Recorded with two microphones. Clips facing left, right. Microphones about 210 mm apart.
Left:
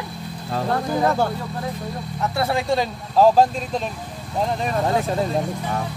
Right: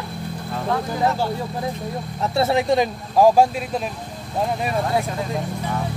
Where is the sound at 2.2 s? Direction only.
25° right (ahead or behind).